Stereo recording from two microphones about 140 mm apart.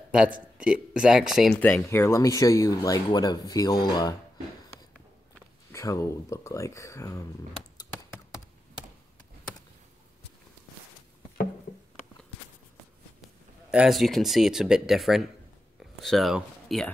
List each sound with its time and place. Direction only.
0.6 s speech: 5° right (ahead or behind)
1.6 s speech: 15° left (ahead or behind)
5.7 s speech: 20° left (ahead or behind)
13.7 s speech: 5° right (ahead or behind)